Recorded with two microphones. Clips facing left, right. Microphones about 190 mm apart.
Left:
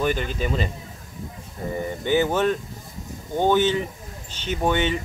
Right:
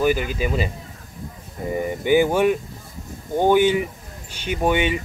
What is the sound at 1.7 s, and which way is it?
Speech, 15° right (ahead or behind).